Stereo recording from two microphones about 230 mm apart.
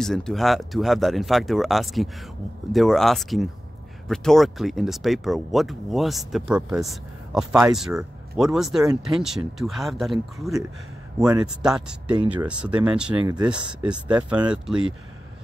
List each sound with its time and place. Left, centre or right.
0.0 s speech: centre
13.1 s speech: centre
13.5 s speech: centre